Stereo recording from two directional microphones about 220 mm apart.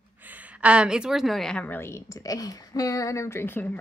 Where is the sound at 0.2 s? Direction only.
10° right (ahead or behind).